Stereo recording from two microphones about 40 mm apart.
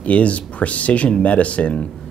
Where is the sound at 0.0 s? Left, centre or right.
Left.